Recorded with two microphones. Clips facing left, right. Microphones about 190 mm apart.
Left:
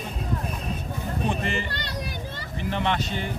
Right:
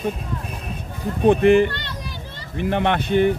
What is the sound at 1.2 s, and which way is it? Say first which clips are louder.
Speech: right 17 dB; 55° right (ahead or behind).